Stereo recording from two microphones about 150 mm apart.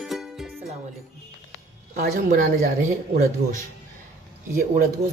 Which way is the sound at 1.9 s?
60° right (ahead or behind).